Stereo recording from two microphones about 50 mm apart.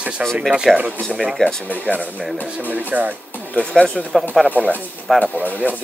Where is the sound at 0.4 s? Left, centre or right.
Centre.